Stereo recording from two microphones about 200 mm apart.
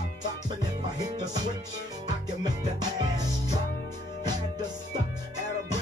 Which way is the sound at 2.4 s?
20° right (ahead or behind).